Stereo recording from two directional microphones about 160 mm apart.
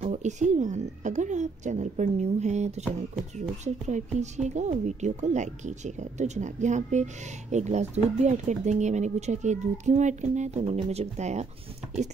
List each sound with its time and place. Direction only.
0.0 s speech: 45° right (ahead or behind)